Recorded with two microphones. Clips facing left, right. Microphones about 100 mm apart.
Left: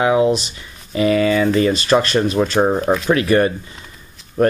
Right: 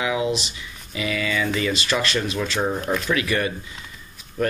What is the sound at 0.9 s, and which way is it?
Speech, 40° left (ahead or behind).